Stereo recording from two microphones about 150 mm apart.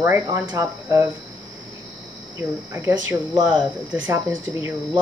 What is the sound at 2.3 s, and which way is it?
Speech, 20° right (ahead or behind).